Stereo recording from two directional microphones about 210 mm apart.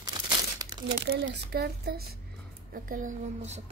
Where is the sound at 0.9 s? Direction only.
50° right (ahead or behind); by 3.6 s 35° right (ahead or behind).